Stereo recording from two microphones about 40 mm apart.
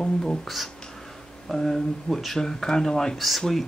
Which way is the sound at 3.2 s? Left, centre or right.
Centre.